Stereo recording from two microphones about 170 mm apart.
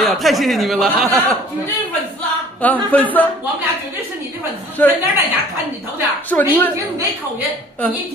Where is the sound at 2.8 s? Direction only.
10° left (ahead or behind).